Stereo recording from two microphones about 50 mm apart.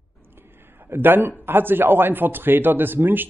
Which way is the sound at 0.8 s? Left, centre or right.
Right.